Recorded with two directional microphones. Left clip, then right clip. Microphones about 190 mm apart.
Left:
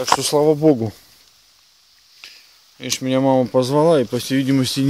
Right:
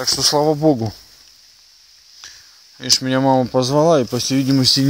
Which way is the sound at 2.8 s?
Centre (ahead or behind).